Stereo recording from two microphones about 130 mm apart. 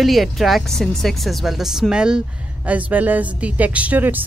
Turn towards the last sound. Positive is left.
turn(degrees=-15)  # may be behind; listen again after turning